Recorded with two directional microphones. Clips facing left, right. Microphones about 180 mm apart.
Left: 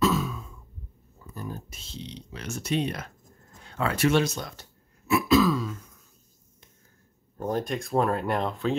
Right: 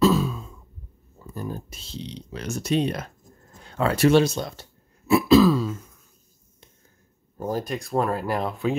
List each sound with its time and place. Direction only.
0.0 s throat clearing: 30° right (ahead or behind)
1.2 s speech: 30° right (ahead or behind)
7.3 s speech: 5° right (ahead or behind)